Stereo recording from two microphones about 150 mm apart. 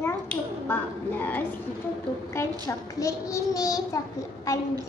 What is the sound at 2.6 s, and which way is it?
A child's voice, 20° left (ahead or behind).